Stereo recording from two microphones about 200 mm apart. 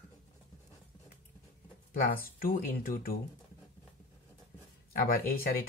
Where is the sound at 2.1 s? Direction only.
45° left (ahead or behind).